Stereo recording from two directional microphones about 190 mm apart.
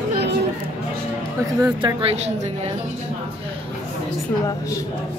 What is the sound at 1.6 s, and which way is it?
Speech, 20° right (ahead or behind).